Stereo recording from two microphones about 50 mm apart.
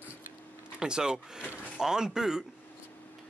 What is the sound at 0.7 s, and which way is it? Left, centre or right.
Speech, centre.